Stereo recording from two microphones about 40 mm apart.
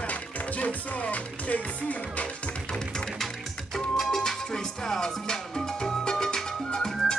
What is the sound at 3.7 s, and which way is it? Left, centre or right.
Music, centre.